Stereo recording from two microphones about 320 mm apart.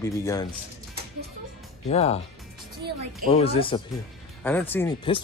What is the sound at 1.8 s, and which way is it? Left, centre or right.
Speech, centre.